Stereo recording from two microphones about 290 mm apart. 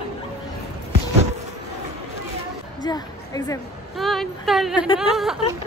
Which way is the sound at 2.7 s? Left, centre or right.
Centre.